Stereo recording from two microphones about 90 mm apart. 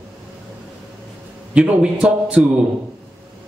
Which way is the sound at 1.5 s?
10° right (ahead or behind).